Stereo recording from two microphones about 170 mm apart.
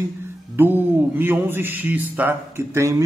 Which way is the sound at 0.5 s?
10° right (ahead or behind).